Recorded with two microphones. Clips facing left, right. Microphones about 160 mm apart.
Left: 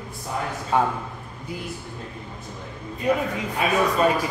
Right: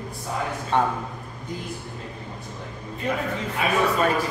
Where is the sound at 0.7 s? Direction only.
5° left (ahead or behind).